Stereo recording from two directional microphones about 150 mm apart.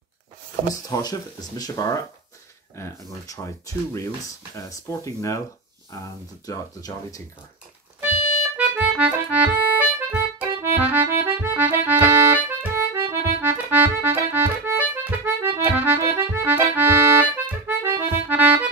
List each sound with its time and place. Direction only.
0.7 s speech: 25° left (ahead or behind)
8.5 s accordion: 10° right (ahead or behind)